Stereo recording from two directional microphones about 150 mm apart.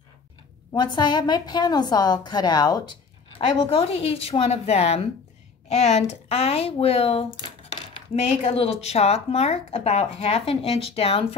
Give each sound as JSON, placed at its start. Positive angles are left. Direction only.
{"t": 0.7, "sound": "a woman's voice", "side_deg": 30}
{"t": 8.5, "sound": "speech", "side_deg": 45}